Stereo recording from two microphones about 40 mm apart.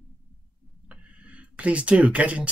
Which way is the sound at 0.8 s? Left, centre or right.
Right.